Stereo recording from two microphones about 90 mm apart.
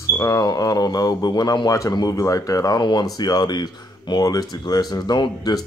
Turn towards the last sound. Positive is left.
turn(degrees=55)  # may be behind; listen again after turning